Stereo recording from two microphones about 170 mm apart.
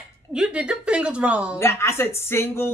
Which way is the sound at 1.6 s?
15° left (ahead or behind).